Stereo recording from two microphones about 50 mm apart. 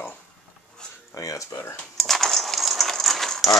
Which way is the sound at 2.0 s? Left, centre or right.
Centre.